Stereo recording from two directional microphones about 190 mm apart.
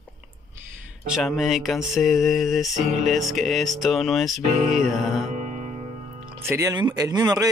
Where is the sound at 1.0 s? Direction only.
Centre (ahead or behind).